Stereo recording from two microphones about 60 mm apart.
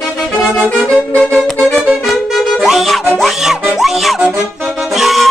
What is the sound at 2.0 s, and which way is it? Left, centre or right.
Music, centre.